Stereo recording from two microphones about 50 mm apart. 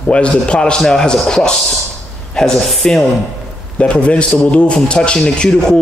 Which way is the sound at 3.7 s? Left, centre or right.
Left.